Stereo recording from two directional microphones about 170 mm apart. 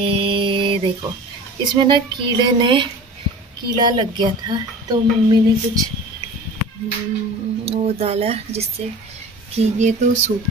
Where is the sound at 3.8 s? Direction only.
25° right (ahead or behind).